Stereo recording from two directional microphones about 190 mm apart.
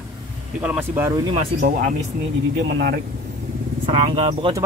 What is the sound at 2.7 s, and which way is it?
Speech, 70° right (ahead or behind).